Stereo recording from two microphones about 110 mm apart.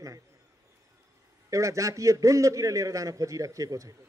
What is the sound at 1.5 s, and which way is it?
A man's voice, 30° right (ahead or behind).